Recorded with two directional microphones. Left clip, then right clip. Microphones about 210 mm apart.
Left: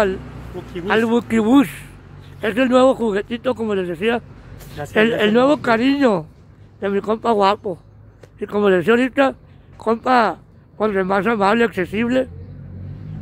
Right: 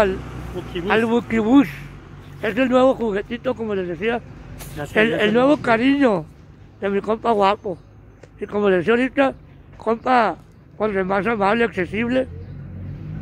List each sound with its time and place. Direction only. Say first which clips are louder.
0.8 s speech: left 1 dB; 15° left (ahead or behind)